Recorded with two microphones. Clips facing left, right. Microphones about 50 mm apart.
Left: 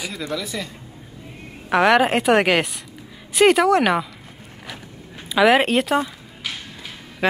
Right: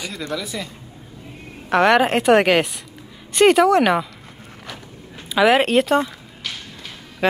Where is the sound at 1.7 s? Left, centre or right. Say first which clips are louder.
Right 1 dB; centre.